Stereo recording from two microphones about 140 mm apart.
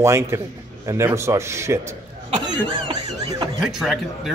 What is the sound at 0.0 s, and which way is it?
Speech, 20° right (ahead or behind).